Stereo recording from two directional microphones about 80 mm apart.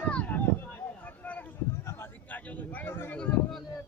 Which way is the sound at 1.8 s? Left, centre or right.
Left.